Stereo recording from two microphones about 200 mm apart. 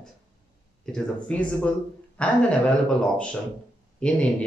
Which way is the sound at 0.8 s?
5° left (ahead or behind).